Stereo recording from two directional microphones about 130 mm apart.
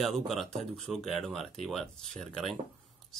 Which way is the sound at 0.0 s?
Centre (ahead or behind).